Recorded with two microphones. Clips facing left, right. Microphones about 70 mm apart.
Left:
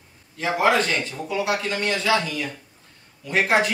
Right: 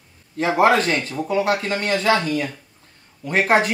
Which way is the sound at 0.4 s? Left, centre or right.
Right.